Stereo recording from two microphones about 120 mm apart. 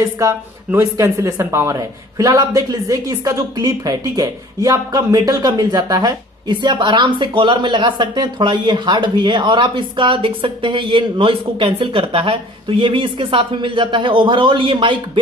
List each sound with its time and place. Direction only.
0.0 s speech: 25° right (ahead or behind); by 15.0 s 45° right (ahead or behind)